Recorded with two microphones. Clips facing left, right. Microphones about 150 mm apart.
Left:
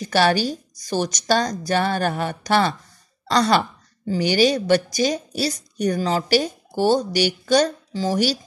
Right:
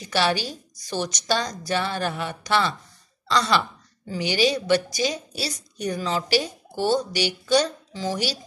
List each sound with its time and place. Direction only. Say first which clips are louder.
0.1 s a woman's voice: left 5 dB; 45° left (ahead or behind)